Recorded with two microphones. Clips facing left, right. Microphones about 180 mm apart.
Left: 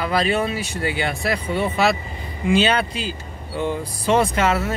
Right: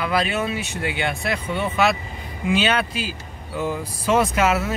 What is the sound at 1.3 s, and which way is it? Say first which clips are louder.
Speech: left 2 dB; 35° left (ahead or behind).